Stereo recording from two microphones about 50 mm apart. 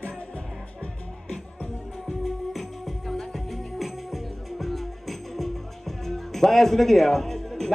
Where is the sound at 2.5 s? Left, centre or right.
Centre.